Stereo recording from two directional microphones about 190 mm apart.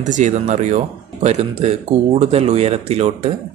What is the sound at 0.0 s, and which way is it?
Speech, 40° right (ahead or behind).